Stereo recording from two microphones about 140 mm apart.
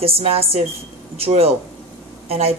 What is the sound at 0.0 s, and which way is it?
A woman's voice, 45° right (ahead or behind).